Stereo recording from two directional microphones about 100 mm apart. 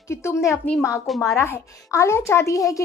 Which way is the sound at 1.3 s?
30° left (ahead or behind).